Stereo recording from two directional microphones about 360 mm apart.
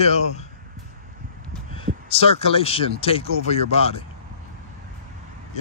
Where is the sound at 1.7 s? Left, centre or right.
Centre.